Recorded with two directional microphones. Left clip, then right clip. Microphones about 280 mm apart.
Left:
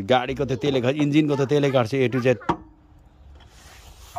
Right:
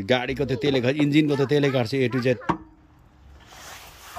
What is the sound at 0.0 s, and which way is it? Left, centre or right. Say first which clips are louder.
Speech: left 2 dB; centre.